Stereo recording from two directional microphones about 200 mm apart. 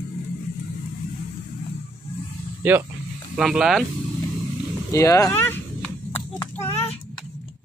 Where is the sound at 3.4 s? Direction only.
Centre (ahead or behind).